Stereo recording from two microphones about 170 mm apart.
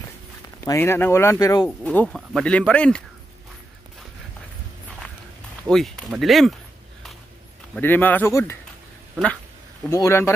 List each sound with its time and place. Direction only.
0.7 s speech: 15° left (ahead or behind)
1.9 s speech: 5° left (ahead or behind)
5.6 s speech: 5° left (ahead or behind)
7.7 s speech: 10° left (ahead or behind)
9.8 s speech: 15° left (ahead or behind)